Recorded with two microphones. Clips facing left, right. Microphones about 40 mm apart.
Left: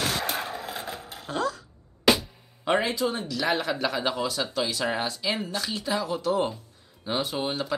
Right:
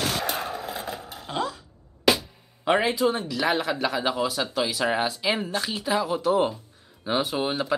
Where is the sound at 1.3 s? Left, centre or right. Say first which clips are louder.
Left 1 dB; right.